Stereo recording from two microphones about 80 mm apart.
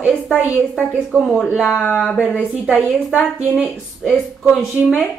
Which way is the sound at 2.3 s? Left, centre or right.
Centre.